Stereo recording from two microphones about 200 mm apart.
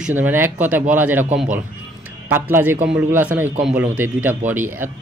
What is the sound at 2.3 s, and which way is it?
A man's voice, 10° right (ahead or behind).